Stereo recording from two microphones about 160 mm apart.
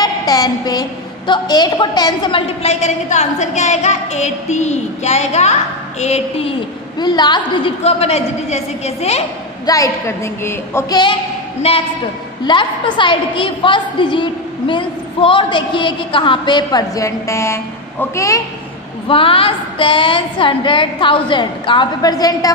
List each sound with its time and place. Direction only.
0.0 s a woman's voice: 25° left (ahead or behind); by 6.5 s 40° left (ahead or behind)
7.0 s a woman's voice: 25° left (ahead or behind)
7.8 s a woman's voice: 40° left (ahead or behind)
9.7 s a woman's voice: 20° left (ahead or behind)
11.6 s a woman's voice: 40° left (ahead or behind); by 18.4 s 20° left (ahead or behind)
19.0 s a woman's voice: 35° left (ahead or behind)